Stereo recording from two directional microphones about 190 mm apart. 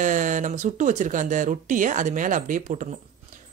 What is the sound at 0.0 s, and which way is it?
Speech, 40° right (ahead or behind).